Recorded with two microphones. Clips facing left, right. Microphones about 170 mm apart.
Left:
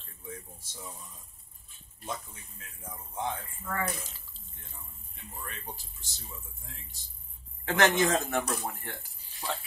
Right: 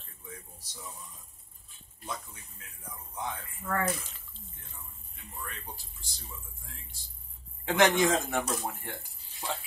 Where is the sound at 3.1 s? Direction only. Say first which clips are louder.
Left 3 dB; 25° left (ahead or behind).